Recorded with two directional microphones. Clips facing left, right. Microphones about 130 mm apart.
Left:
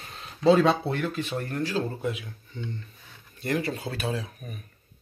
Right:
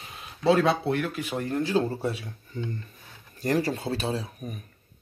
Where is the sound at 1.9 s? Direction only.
35° right (ahead or behind).